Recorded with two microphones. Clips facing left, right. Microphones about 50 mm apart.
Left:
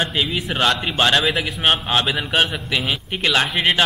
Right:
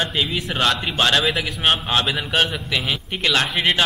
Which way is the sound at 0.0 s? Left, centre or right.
Centre.